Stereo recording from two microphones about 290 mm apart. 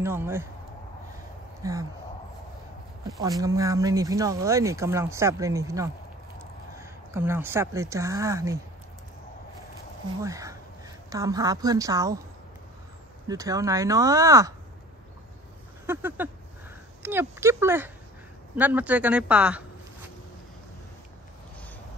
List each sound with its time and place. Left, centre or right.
0.0 s speech: centre
1.6 s speech: centre
3.2 s speech: centre
10.2 s speech: centre
13.3 s speech: centre
15.9 s speech: centre